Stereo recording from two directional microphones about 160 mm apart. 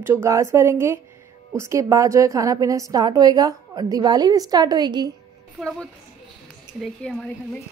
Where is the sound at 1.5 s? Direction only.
20° right (ahead or behind).